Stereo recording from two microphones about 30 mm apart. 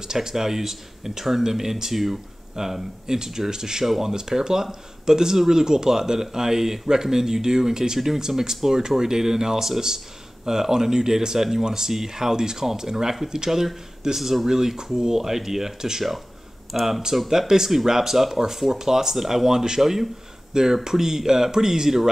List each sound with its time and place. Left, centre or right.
0.0 s speech: right
3.8 s speech: centre
4.1 s speech: right
16.7 s speech: centre
17.3 s speech: centre